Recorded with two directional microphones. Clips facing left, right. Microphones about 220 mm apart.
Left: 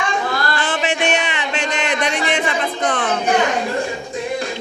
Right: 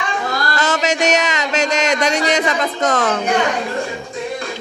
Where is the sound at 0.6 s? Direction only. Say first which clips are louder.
Right 3 dB; 40° right (ahead or behind).